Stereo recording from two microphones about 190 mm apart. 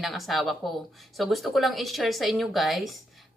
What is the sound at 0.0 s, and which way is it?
Speech, centre (ahead or behind).